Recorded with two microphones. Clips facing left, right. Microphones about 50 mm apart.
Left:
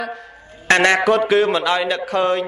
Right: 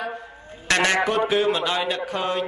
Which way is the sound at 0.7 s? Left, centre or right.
Left.